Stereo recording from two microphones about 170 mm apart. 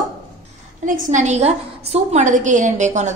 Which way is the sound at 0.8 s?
45° right (ahead or behind).